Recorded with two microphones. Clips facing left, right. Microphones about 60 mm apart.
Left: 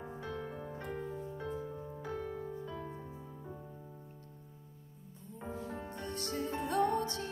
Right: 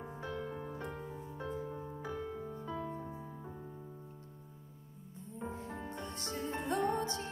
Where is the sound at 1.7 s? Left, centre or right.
Centre.